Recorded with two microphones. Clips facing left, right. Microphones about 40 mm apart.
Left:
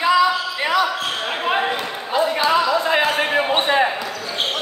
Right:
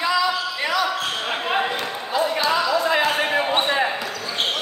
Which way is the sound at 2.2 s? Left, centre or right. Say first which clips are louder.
Left 3 dB; left.